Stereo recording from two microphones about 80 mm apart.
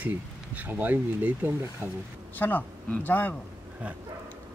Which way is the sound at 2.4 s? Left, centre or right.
Left.